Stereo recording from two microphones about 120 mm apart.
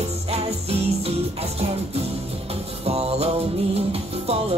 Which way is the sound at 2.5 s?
60° right (ahead or behind).